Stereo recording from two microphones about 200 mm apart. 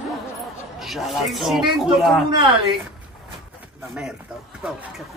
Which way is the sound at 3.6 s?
5° right (ahead or behind).